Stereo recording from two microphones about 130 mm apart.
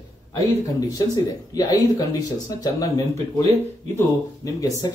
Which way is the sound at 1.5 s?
30° left (ahead or behind).